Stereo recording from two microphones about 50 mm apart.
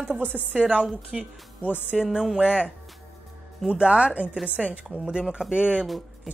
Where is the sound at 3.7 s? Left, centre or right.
Right.